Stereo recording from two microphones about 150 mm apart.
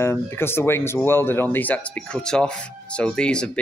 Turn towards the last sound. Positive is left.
turn(degrees=5)  # may be behind; listen again after turning